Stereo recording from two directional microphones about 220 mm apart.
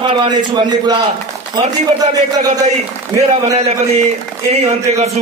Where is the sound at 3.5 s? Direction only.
30° right (ahead or behind).